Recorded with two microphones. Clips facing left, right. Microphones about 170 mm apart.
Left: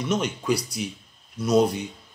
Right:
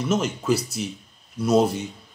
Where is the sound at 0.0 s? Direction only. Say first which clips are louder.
Right 2 dB; 5° right (ahead or behind).